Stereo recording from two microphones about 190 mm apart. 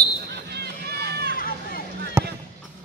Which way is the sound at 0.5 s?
60° right (ahead or behind).